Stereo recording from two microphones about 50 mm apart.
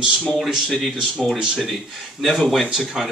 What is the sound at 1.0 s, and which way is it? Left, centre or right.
Speech, centre.